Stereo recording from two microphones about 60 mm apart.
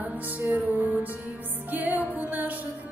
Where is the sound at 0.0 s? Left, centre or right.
Right.